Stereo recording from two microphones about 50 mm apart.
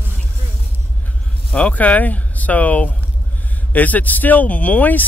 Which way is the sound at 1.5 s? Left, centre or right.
Left.